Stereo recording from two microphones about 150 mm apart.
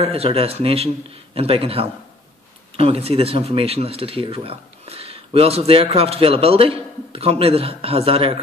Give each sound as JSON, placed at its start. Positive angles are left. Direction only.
{"t": 0.0, "sound": "speech", "side_deg": -40}